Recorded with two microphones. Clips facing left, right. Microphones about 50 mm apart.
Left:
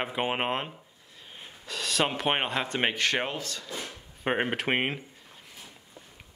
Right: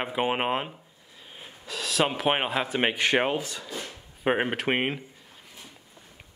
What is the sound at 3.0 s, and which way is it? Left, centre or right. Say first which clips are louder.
Speech: right 4 dB; centre.